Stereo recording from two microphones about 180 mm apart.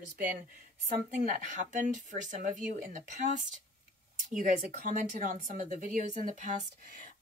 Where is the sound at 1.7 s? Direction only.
45° right (ahead or behind).